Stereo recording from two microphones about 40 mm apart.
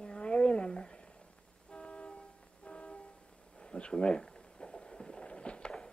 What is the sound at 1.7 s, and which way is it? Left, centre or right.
Vehicle, left.